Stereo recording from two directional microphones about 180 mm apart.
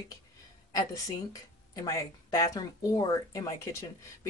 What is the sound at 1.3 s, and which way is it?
Speech, 20° left (ahead or behind).